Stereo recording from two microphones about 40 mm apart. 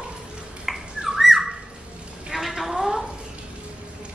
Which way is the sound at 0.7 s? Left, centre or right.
Centre.